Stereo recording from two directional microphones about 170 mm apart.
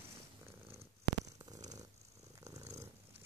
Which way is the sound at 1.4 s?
20° right (ahead or behind).